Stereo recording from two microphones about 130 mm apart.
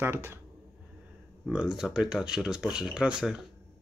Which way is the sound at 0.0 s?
20° right (ahead or behind).